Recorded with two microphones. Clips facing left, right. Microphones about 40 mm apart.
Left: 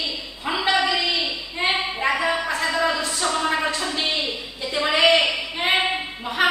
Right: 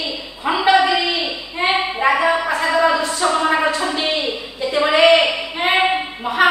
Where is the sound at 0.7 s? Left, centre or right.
Centre.